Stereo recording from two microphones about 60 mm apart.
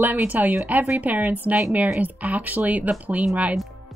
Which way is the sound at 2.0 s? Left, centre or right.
Right.